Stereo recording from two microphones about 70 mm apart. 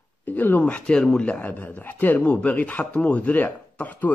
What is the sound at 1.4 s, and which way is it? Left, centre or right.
Speech, left.